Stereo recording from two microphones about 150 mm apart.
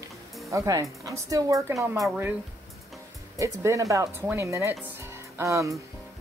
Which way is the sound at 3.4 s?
20° right (ahead or behind).